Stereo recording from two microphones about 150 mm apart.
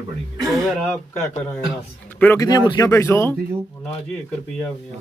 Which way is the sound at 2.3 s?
25° left (ahead or behind).